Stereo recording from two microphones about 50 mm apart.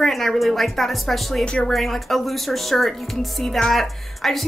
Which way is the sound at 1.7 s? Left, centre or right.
Centre.